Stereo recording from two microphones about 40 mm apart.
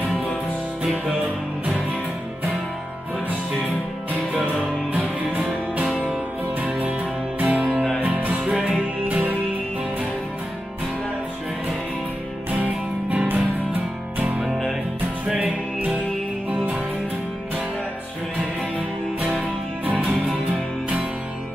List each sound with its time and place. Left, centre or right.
5.4 s music: right
6.6 s music: right
8.5 s music: right
12.4 s music: right